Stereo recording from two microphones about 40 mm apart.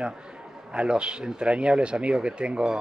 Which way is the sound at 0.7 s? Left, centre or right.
Right.